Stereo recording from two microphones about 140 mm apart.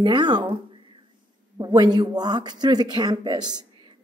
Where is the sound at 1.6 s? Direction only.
30° right (ahead or behind).